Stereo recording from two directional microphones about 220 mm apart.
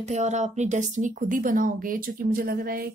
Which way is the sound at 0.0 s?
30° right (ahead or behind).